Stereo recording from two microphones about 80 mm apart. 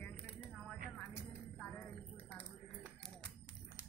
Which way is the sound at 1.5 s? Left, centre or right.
Centre.